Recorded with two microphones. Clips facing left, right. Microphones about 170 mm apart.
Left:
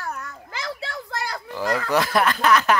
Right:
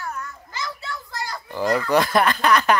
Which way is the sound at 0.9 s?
60° left (ahead or behind).